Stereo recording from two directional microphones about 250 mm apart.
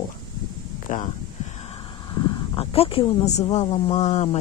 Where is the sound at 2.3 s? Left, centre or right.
Left.